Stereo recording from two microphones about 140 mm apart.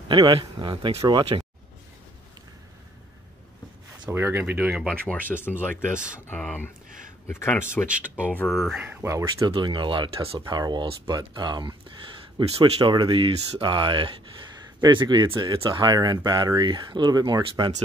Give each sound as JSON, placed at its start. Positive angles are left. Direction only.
{"t": 0.1, "sound": "speech", "side_deg": -30}
{"t": 4.1, "sound": "speech", "side_deg": -15}
{"t": 5.1, "sound": "speech", "side_deg": 10}
{"t": 6.1, "sound": "speech", "side_deg": 15}
{"t": 8.0, "sound": "speech", "side_deg": -10}
{"t": 8.8, "sound": "speech", "side_deg": -15}
{"t": 9.5, "sound": "speech", "side_deg": -35}